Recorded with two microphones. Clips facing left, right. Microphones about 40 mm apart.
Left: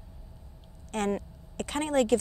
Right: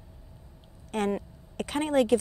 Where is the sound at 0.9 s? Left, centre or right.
Centre.